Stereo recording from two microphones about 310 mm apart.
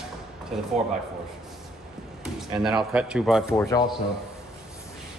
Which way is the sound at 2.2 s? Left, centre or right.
Centre.